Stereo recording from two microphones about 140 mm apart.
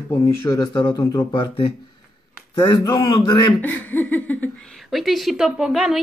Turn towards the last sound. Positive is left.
turn(degrees=-5)  # may be behind; listen again after turning